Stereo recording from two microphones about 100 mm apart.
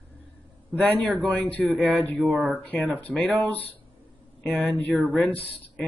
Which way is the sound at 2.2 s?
15° right (ahead or behind).